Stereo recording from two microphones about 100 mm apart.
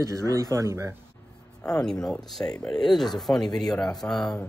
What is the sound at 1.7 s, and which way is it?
Speech, 5° left (ahead or behind).